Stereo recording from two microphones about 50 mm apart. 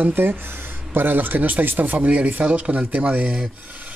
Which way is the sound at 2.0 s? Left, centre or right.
Right.